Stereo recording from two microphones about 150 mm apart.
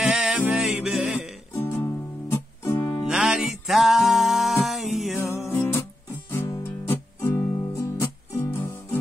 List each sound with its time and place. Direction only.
0.0 s music: 5° right (ahead or behind)
1.5 s music: 15° left (ahead or behind)
3.1 s music: 5° right (ahead or behind)
5.5 s music: 15° left (ahead or behind)